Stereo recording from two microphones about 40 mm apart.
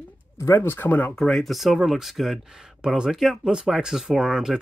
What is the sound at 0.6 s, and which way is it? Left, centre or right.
Speech, left.